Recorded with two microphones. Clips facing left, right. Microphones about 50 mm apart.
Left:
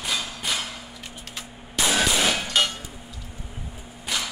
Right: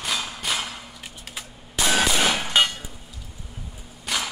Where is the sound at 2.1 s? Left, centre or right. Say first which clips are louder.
Right 2 dB; centre.